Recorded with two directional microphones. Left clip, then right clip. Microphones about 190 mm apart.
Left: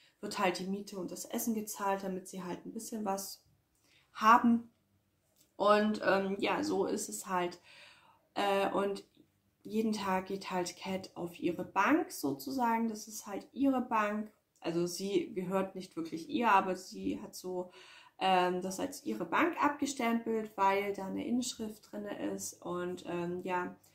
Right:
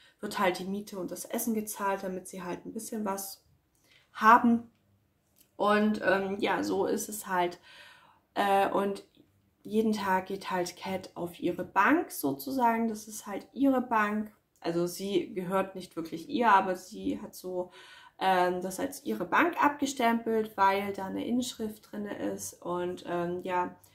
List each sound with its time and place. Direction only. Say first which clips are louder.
0.2 s a woman's voice: right 4 dB; 15° right (ahead or behind)
5.6 s speech: right 1 dB; 10° right (ahead or behind)